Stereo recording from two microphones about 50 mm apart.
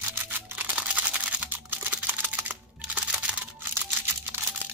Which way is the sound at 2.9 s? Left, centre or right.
Right.